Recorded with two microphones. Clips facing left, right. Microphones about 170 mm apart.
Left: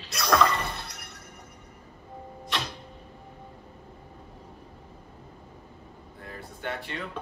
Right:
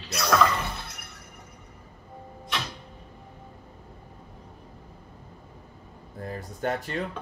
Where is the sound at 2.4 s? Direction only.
Centre (ahead or behind).